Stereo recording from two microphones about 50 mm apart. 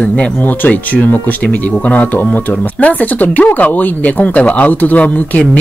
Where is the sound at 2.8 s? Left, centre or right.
Left.